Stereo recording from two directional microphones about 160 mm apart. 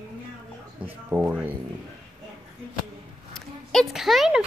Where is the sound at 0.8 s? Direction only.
10° right (ahead or behind).